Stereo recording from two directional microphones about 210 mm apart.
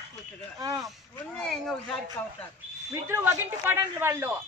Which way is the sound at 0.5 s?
15° right (ahead or behind).